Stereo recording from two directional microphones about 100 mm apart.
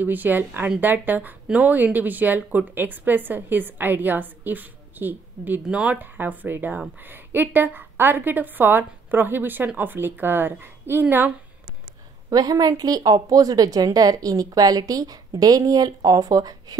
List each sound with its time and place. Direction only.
0.0 s a woman's voice: 20° right (ahead or behind)
12.3 s a woman's voice: 40° right (ahead or behind)